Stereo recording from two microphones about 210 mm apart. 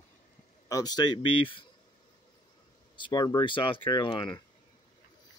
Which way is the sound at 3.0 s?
20° left (ahead or behind).